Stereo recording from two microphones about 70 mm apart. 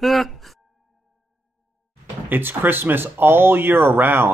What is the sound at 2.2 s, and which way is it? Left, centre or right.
Speech, right.